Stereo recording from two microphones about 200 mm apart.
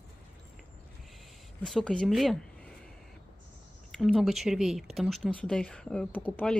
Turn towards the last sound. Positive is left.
turn(degrees=10)  # may be behind; listen again after turning